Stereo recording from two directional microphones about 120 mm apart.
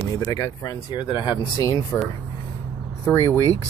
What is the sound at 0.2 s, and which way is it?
Speech, 30° left (ahead or behind).